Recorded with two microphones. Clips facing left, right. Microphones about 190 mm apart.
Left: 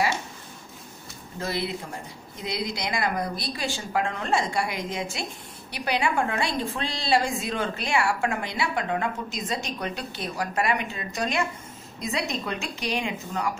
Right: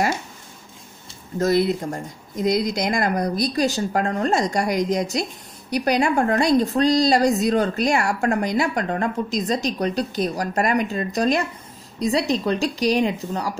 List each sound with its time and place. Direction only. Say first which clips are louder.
1.4 s a woman's voice: right 11 dB; 45° right (ahead or behind)